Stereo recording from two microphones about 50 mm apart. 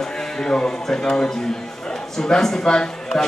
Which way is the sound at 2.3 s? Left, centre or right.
Centre.